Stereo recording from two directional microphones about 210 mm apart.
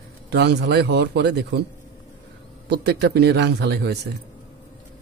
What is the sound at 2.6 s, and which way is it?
Speech, 50° right (ahead or behind).